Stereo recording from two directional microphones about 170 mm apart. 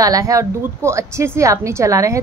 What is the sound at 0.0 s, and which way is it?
A woman's voice, 20° right (ahead or behind).